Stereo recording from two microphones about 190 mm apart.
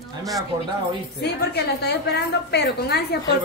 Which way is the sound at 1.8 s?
60° left (ahead or behind).